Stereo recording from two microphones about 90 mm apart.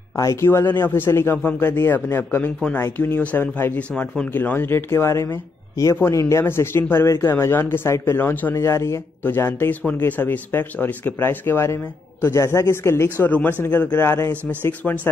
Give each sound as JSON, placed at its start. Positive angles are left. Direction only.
{"t": 0.1, "sound": "speech", "side_deg": 35}
{"t": 8.5, "sound": "speech", "side_deg": 30}
{"t": 13.3, "sound": "speech", "side_deg": 20}
{"t": 14.3, "sound": "speech", "side_deg": -25}
{"t": 14.6, "sound": "speech", "side_deg": 20}